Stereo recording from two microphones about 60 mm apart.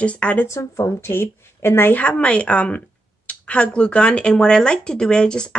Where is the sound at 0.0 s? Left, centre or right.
Left.